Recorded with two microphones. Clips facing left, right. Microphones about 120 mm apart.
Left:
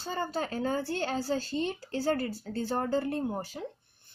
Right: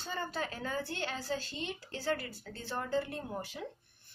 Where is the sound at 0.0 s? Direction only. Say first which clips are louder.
Left 5 dB; 35° left (ahead or behind).